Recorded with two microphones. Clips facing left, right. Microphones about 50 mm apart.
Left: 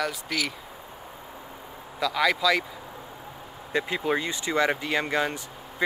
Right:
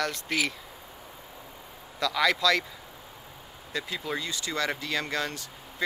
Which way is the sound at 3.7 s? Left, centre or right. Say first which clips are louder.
Left 7 dB; left.